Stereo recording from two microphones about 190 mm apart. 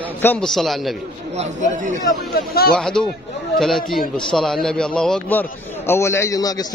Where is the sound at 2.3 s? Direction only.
55° left (ahead or behind).